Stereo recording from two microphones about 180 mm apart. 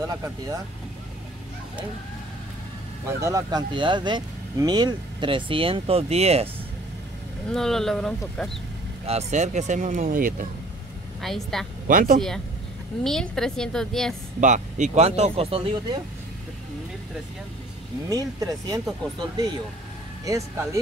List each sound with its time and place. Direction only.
0.0 s speech: 20° right (ahead or behind)
3.1 s speech: 15° right (ahead or behind); by 6.5 s 35° right (ahead or behind)
7.5 s a woman's voice: centre (ahead or behind)
9.0 s speech: 40° right (ahead or behind)
11.1 s a woman's voice: centre (ahead or behind)
11.9 s speech: 50° right (ahead or behind)
13.0 s a woman's voice: 5° left (ahead or behind)
14.4 s speech: 45° right (ahead or behind)
18.1 s speech: 20° right (ahead or behind)